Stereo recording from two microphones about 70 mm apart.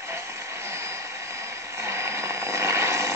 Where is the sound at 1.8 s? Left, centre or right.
Right.